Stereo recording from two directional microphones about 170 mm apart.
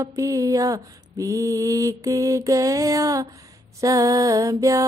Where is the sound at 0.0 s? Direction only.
20° right (ahead or behind).